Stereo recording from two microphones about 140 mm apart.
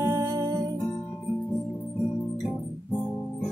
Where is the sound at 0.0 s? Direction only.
20° right (ahead or behind).